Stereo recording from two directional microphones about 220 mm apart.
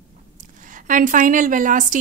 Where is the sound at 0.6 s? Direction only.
35° right (ahead or behind).